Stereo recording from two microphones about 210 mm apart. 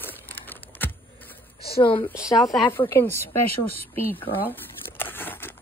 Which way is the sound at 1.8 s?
25° left (ahead or behind).